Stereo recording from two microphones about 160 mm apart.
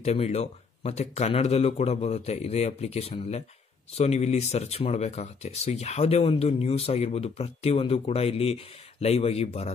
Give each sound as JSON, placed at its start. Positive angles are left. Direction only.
{"t": 0.0, "sound": "speech", "side_deg": 40}